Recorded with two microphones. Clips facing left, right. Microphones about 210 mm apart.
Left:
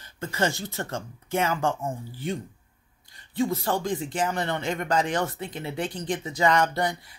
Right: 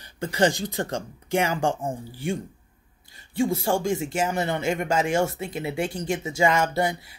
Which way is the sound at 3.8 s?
10° right (ahead or behind).